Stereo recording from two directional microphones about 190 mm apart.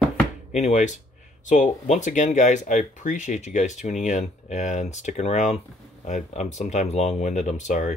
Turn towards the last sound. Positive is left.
turn(degrees=40)  # may be behind; listen again after turning